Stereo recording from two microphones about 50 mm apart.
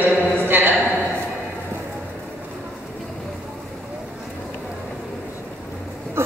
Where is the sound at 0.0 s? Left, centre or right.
Right.